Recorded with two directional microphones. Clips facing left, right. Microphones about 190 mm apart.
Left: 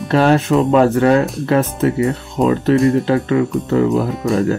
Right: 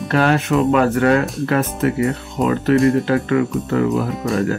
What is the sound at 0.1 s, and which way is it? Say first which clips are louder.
Speech: left 3 dB; 30° left (ahead or behind).